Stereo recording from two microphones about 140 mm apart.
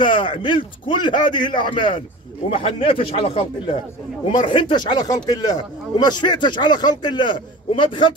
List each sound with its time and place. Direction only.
0.0 s speech: 35° left (ahead or behind)